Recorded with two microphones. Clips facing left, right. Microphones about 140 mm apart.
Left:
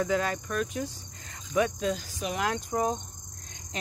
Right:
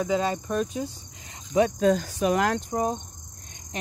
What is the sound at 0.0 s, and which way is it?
Speech, 20° right (ahead or behind).